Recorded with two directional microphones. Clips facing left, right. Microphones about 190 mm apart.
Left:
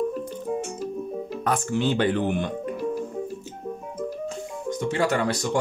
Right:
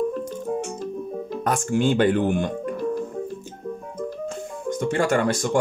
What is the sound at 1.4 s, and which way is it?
Speech, 50° right (ahead or behind).